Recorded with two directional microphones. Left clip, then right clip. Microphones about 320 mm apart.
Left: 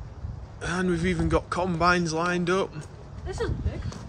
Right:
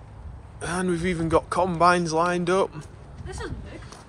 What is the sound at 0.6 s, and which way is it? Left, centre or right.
A man's voice, centre.